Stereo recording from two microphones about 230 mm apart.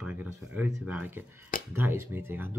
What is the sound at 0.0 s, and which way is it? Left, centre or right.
Speech, centre.